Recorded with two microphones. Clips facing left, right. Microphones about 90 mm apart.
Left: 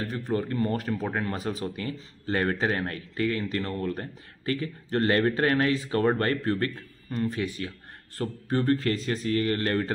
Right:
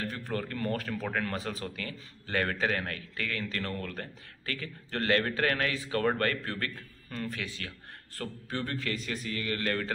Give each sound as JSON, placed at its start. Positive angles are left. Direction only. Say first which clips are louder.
{"t": 0.0, "sound": "speech", "louder": "left 6 dB", "side_deg": 20}
{"t": 8.5, "sound": "speech", "louder": "left 10 dB", "side_deg": 35}